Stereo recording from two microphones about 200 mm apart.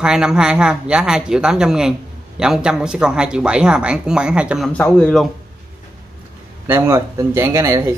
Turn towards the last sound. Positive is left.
turn(degrees=-15)  # may be behind; listen again after turning